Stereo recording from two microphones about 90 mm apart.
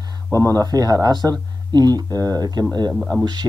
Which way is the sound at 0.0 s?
40° right (ahead or behind).